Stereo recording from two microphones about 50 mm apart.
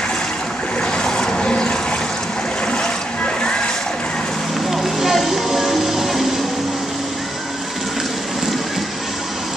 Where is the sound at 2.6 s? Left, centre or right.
Centre.